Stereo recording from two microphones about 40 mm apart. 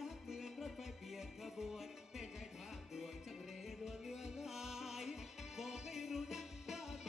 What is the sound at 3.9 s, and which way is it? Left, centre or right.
Music, centre.